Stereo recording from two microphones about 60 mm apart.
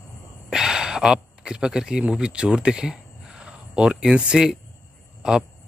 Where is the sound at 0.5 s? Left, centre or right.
Centre.